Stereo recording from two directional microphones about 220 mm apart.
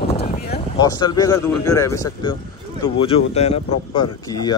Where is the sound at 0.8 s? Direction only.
15° left (ahead or behind).